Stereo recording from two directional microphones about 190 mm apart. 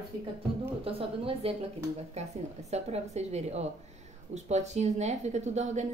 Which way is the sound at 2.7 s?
35° right (ahead or behind).